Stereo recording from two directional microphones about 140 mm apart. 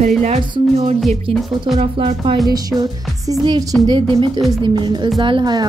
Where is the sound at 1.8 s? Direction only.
40° right (ahead or behind).